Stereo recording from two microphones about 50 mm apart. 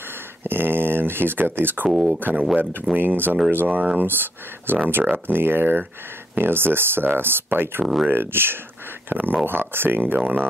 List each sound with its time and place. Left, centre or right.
0.4 s speech: right
4.1 s speech: right
7.8 s speech: centre
8.1 s speech: right